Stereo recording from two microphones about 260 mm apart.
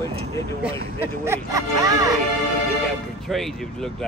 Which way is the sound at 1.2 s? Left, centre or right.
Centre.